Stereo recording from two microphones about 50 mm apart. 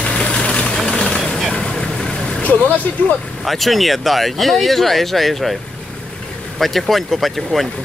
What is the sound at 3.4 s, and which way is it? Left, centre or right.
Speech, centre.